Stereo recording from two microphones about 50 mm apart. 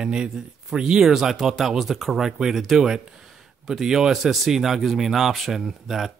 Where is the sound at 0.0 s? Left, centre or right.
Centre.